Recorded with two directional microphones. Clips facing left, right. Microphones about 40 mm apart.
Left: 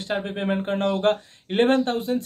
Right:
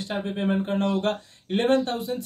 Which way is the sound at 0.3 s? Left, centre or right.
Left.